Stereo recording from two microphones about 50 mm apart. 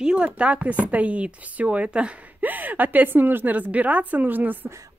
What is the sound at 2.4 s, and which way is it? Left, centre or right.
Speech, right.